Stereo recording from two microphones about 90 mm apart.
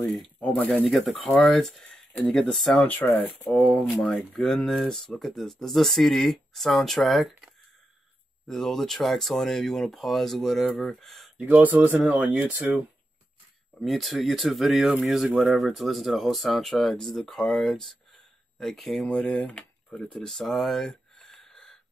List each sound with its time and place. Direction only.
0.0 s speech: 10° left (ahead or behind)
0.8 s speech: centre (ahead or behind)
2.7 s speech: 20° left (ahead or behind)
4.3 s speech: 5° left (ahead or behind)
11.3 s speech: 20° right (ahead or behind)
13.7 s speech: centre (ahead or behind)